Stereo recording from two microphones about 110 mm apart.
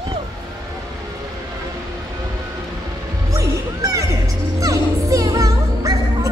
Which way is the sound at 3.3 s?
30° right (ahead or behind).